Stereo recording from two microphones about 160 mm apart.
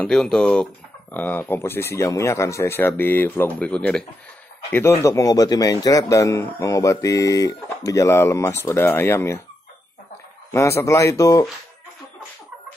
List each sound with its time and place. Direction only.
0.0 s speech: 5° left (ahead or behind)
4.7 s speech: 15° left (ahead or behind)
10.5 s speech: 15° left (ahead or behind)